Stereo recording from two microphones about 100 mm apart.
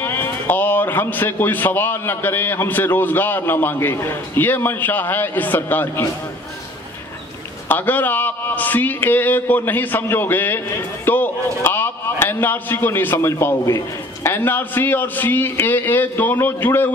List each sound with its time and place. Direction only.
0.0 s a man's voice: 25° left (ahead or behind)
7.6 s a man's voice: 20° left (ahead or behind)